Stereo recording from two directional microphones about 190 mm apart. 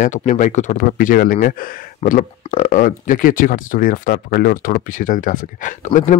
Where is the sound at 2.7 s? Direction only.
45° left (ahead or behind).